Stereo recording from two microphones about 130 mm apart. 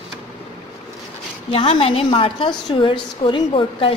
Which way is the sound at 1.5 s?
45° left (ahead or behind).